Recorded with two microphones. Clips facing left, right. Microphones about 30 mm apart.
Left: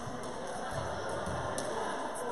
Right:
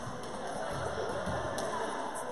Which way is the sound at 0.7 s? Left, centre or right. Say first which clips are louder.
Even; centre.